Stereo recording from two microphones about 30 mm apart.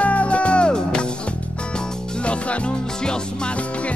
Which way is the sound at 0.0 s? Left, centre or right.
Left.